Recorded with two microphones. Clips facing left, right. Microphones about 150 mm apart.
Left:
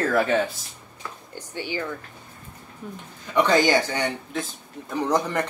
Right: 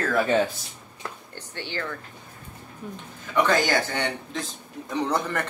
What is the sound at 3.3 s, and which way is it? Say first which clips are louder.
Speech: left 3 dB; 15° left (ahead or behind).